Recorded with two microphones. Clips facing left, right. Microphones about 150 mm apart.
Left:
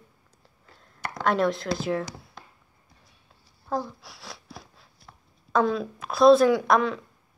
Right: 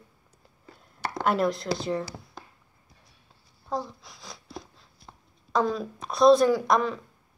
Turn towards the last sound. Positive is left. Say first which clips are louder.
# left 2 dB
turn(degrees=0)  # may be behind; listen again after turning